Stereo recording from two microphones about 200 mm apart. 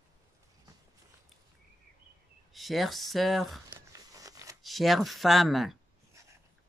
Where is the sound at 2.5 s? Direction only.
Centre (ahead or behind).